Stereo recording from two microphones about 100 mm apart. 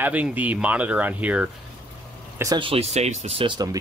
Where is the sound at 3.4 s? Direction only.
40° right (ahead or behind).